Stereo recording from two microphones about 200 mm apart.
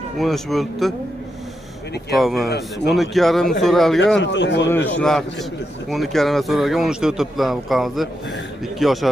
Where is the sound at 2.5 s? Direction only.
55° left (ahead or behind).